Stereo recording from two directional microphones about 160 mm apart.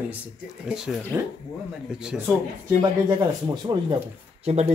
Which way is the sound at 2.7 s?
20° right (ahead or behind).